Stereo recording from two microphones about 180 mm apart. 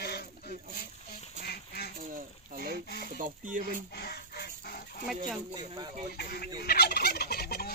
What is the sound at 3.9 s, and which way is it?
Goose, 60° left (ahead or behind).